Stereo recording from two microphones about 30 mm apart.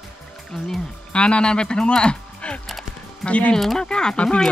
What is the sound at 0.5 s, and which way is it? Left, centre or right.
Speech, centre.